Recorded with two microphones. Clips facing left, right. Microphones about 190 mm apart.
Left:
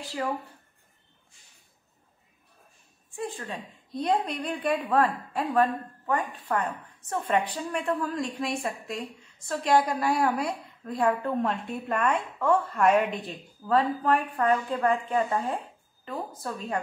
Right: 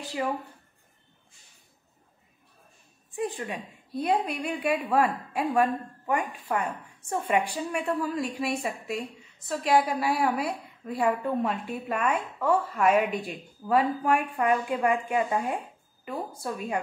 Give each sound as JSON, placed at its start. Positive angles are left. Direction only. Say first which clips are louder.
{"t": 0.0, "sound": "speech", "louder": "right 1 dB", "side_deg": -15}
{"t": 3.2, "sound": "a woman's voice", "louder": "right 3 dB", "side_deg": -15}